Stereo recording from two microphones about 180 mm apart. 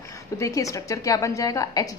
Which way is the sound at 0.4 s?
20° left (ahead or behind).